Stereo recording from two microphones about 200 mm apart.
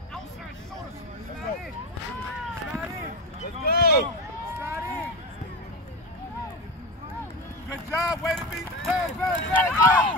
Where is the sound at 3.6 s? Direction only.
50° left (ahead or behind).